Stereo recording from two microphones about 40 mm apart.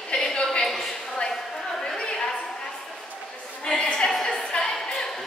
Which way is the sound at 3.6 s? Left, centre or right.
Centre.